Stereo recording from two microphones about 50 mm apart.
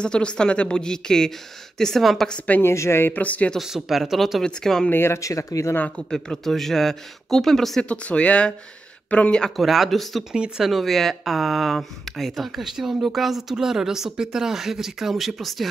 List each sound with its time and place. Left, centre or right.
0.0 s speech: centre
2.2 s speech: left
2.6 s a woman's voice: left
3.2 s speech: left
3.6 s speech: centre
4.4 s speech: centre
4.9 s speech: left
5.2 s speech: left
6.0 s speech: centre
7.9 s speech: left
9.6 s speech: centre